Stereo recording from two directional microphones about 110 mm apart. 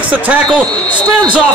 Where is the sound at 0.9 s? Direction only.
45° right (ahead or behind).